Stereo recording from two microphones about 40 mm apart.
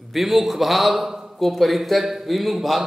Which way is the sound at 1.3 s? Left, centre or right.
Centre.